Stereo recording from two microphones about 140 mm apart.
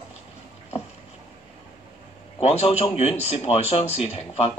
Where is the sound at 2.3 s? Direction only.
45° left (ahead or behind).